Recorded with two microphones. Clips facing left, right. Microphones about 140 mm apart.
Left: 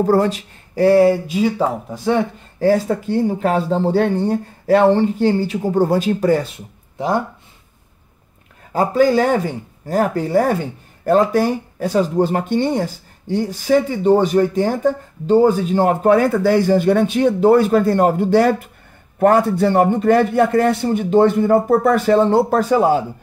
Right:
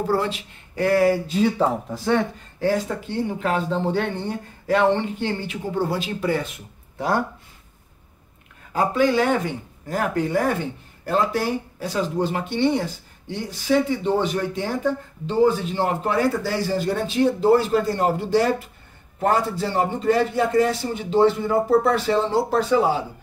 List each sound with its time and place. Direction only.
0.0 s speech: 45° left (ahead or behind); by 1.2 s 25° left (ahead or behind)
1.2 s speech: 10° left (ahead or behind)
2.6 s speech: 40° left (ahead or behind)
8.7 s a man's voice: 40° left (ahead or behind)